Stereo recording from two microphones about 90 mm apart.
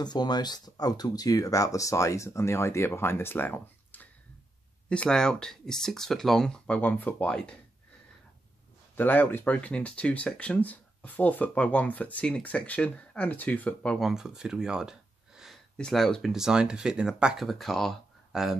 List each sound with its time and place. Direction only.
0.0 s speech: 50° left (ahead or behind); by 6.8 s 10° left (ahead or behind)
6.8 s speech: 20° left (ahead or behind)
8.9 s speech: 20° left (ahead or behind)
13.9 s speech: 5° right (ahead or behind)